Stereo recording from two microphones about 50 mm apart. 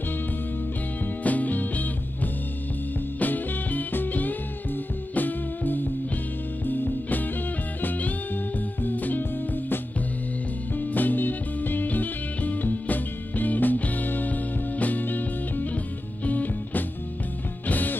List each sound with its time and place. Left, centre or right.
1.2 s music: left
3.2 s music: left
8.8 s music: left
10.8 s music: left